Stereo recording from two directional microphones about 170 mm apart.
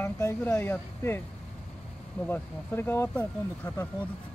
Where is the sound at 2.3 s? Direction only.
15° left (ahead or behind).